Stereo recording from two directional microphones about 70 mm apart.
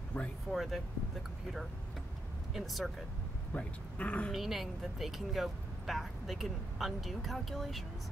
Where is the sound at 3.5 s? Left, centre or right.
Centre.